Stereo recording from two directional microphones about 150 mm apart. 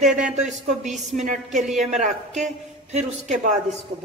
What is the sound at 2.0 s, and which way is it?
Cutlery, 55° right (ahead or behind).